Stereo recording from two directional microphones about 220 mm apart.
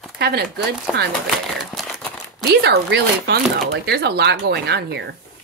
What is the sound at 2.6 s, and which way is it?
Speech, 50° right (ahead or behind).